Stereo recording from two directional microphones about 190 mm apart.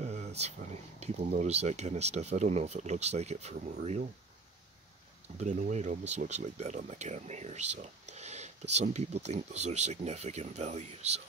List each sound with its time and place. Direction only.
0.0 s a sound: 35° right (ahead or behind)
0.4 s speech: 35° right (ahead or behind)
5.4 s speech: 40° right (ahead or behind)